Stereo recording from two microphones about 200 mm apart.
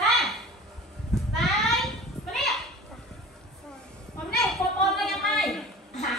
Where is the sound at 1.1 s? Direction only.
Centre (ahead or behind).